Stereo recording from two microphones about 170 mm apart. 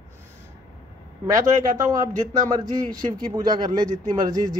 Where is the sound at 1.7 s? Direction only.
20° right (ahead or behind).